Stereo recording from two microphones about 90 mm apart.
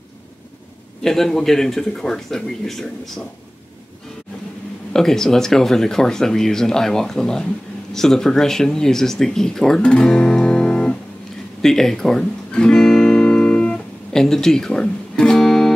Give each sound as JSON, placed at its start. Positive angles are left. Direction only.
{"t": 1.0, "sound": "speech", "side_deg": 5}
{"t": 4.9, "sound": "speech", "side_deg": 5}
{"t": 11.6, "sound": "guitar", "side_deg": 5}